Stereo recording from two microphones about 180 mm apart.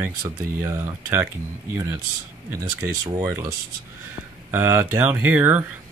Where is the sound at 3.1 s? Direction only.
15° right (ahead or behind).